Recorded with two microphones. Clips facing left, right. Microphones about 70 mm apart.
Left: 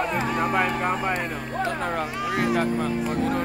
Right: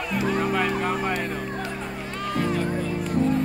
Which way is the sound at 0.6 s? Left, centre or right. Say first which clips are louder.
Left 1 dB; centre.